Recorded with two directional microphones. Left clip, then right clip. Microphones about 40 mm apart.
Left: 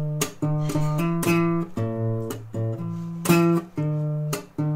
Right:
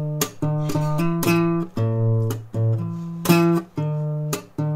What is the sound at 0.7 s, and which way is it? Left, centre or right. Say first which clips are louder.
Music: right 3 dB; right.